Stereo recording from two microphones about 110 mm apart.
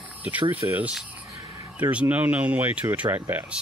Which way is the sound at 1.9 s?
15° right (ahead or behind).